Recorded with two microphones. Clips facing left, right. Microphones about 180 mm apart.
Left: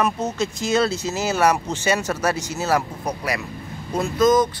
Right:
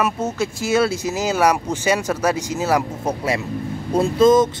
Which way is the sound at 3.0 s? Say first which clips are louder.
Right 4 dB; 25° right (ahead or behind).